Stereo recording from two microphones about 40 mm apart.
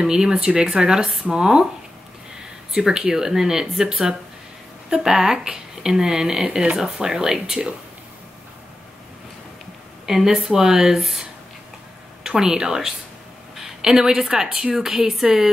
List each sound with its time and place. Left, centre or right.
0.0 s speech: centre
2.7 s speech: centre
6.4 s speech: right
6.8 s speech: centre
10.0 s a woman's voice: centre